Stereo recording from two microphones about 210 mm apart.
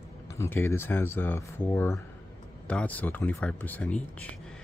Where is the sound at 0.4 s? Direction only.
10° left (ahead or behind).